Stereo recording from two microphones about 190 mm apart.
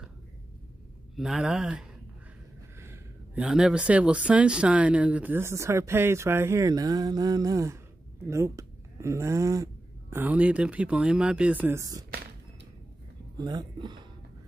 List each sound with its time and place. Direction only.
1.1 s speech: centre (ahead or behind)
2.8 s a sound: 15° right (ahead or behind)
3.4 s speech: 5° right (ahead or behind)
13.4 s speech: 20° right (ahead or behind)